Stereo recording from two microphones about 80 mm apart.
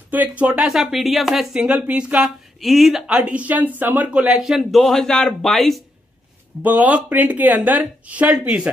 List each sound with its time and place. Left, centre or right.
0.1 s speech: centre
0.9 s speech: centre
2.6 s speech: centre
3.1 s speech: centre
4.4 s speech: centre
6.6 s speech: centre